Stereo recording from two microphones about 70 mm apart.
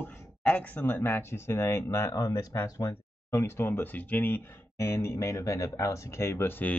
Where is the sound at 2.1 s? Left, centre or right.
Left.